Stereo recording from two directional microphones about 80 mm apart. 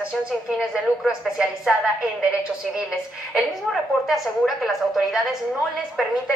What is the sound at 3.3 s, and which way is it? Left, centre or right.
A woman's voice, centre.